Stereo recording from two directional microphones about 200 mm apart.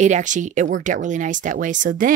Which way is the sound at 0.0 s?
40° right (ahead or behind).